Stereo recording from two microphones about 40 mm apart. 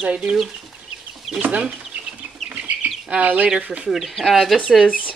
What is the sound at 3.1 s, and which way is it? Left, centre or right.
Speech, right.